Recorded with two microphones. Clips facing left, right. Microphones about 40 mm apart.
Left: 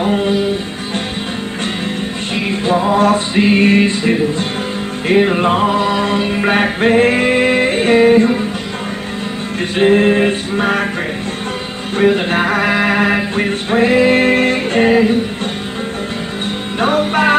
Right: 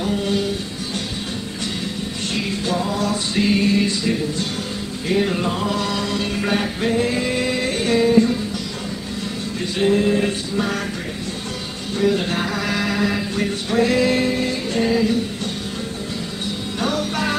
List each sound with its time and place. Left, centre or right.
0.0 s music: left
2.3 s music: left
6.5 s music: left
9.8 s a sound: left
12.0 s a sound: left
14.2 s music: left
16.8 s music: left